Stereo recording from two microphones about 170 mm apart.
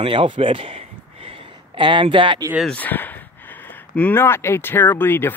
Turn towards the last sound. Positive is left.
turn(degrees=10)  # may be behind; listen again after turning